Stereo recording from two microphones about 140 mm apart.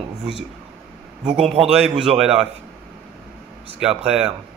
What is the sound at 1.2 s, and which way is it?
Speech, centre (ahead or behind).